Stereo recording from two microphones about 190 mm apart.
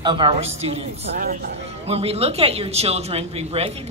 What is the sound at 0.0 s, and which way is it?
Speech, 25° right (ahead or behind).